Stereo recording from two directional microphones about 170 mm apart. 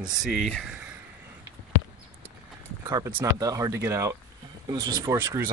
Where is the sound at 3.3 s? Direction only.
20° right (ahead or behind).